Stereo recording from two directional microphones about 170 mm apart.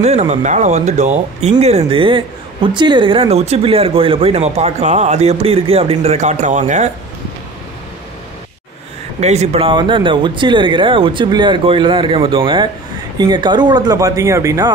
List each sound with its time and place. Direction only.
0.0 s speech: 40° right (ahead or behind)
9.2 s speech: 40° right (ahead or behind); by 14.7 s 20° right (ahead or behind)